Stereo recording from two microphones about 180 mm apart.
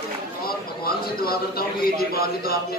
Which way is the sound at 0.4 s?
55° left (ahead or behind).